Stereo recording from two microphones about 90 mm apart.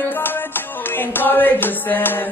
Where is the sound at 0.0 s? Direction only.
20° left (ahead or behind).